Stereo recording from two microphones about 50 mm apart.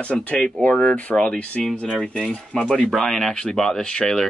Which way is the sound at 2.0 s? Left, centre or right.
Centre.